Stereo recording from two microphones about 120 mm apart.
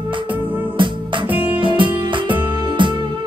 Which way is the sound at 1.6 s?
45° right (ahead or behind).